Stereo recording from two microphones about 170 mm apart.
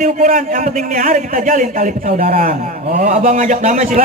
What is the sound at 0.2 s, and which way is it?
A man's voice, 50° right (ahead or behind).